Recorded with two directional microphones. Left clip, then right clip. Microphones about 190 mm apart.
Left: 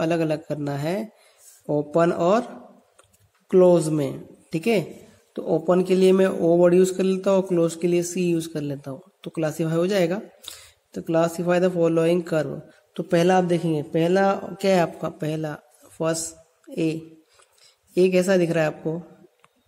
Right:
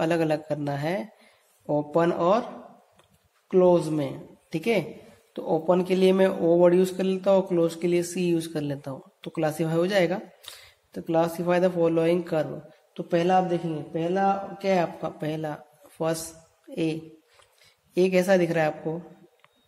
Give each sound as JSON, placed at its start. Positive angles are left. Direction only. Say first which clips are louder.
{"t": 0.0, "sound": "speech", "louder": "left 1 dB", "side_deg": 20}
{"t": 3.4, "sound": "speech", "louder": "left 3 dB", "side_deg": 45}
{"t": 12.9, "sound": "a man's voice", "louder": "left 3 dB", "side_deg": 50}